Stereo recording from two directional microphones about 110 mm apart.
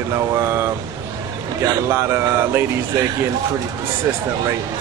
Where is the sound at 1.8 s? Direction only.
20° right (ahead or behind).